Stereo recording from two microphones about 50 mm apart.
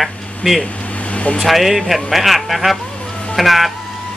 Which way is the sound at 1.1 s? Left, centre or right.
Left.